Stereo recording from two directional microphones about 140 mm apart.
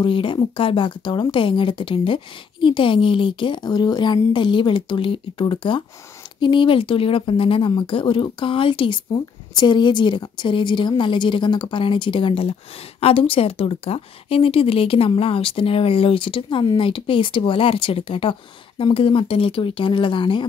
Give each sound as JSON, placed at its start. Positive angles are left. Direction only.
{"t": 0.0, "sound": "speech", "side_deg": 35}